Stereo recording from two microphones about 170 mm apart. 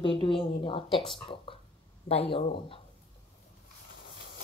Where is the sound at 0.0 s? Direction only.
30° left (ahead or behind).